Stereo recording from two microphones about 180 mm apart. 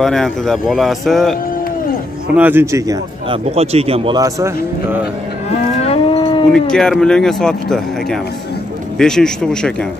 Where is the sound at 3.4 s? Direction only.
35° right (ahead or behind).